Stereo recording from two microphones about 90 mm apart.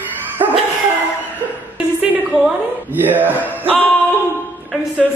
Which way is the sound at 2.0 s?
10° right (ahead or behind).